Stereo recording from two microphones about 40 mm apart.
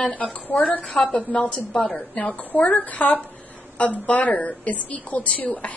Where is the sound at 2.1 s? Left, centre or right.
Left.